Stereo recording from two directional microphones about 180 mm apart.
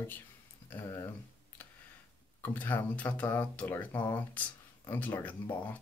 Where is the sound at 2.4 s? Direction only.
10° left (ahead or behind).